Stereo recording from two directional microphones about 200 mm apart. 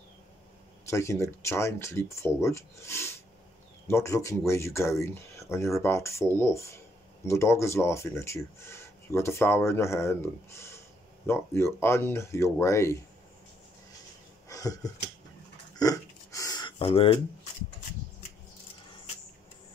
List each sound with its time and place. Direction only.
0.8 s speech: 15° left (ahead or behind)
14.5 s finger snapping: 15° left (ahead or behind)
15.7 s a sound: 20° left (ahead or behind)